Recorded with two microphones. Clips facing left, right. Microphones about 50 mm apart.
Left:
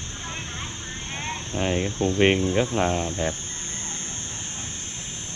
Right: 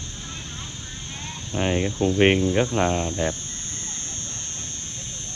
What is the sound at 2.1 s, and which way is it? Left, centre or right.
Speech, right.